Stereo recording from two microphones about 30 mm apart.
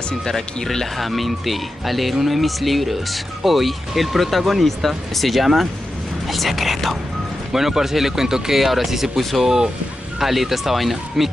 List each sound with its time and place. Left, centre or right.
0.2 s speech: centre
0.9 s speech: centre
7.5 s speech: centre
8.5 s speech: centre
10.1 s speech: centre